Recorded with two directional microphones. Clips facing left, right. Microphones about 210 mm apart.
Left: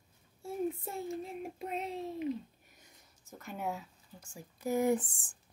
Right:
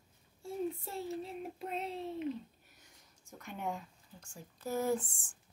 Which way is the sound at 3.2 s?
5° left (ahead or behind).